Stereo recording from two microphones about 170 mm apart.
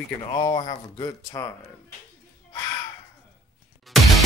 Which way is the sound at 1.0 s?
20° left (ahead or behind).